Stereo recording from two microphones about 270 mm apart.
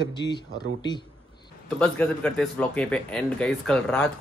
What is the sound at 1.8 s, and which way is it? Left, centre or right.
Speech, centre.